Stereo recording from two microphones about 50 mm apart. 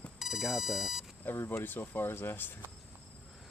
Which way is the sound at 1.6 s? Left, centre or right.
Left.